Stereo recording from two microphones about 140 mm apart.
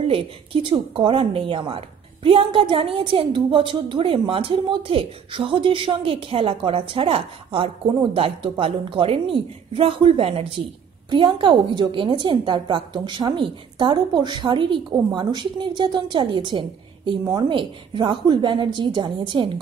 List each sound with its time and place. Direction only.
0.0 s a woman's voice: 40° right (ahead or behind)